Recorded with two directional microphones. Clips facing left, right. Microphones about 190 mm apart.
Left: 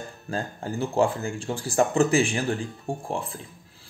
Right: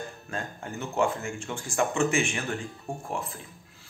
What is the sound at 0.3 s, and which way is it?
Speech, 35° left (ahead or behind).